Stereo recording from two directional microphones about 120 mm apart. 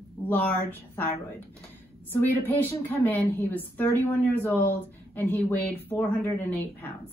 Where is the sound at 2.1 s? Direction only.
15° left (ahead or behind).